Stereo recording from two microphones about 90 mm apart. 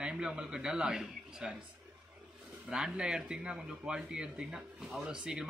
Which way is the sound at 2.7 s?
10° right (ahead or behind).